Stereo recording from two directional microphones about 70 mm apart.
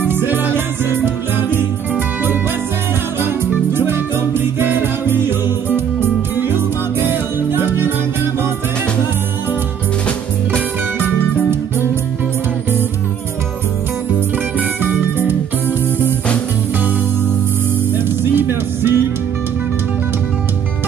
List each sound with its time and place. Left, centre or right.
0.0 s music: right
3.2 s music: right
6.4 s music: right
14.6 s music: right
18.3 s music: right